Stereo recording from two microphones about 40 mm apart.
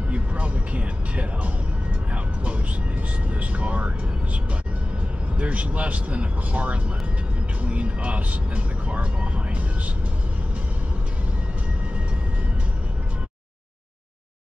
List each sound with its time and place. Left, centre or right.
0.1 s music: right
3.3 s speech: right
5.4 s speech: right